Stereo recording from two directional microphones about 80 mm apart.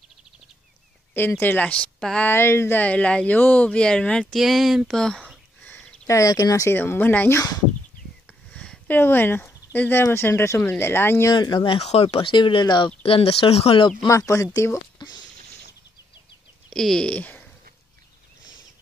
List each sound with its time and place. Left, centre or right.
1.4 s speech: left
2.2 s speech: left
2.8 s speech: centre
4.3 s speech: centre
5.6 s a sound: centre
6.0 s speech: left
6.7 s speech: left
7.3 s speech: left
8.5 s a sound: centre
10.0 s speech: left
11.3 s speech: left
14.0 s speech: left
15.0 s a sound: left
16.7 s speech: centre